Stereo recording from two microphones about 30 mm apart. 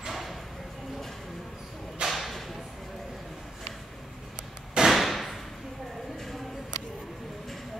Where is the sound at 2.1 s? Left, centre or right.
Centre.